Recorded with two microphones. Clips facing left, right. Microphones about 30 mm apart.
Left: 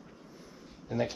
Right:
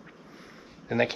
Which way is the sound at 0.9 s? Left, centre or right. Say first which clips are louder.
Right 6 dB; right.